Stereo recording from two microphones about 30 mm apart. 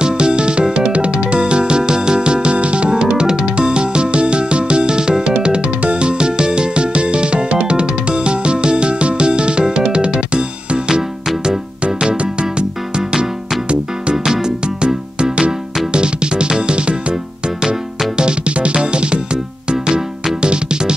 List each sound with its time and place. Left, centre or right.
0.0 s music: right
12.0 s music: right
14.1 s music: centre
15.9 s music: right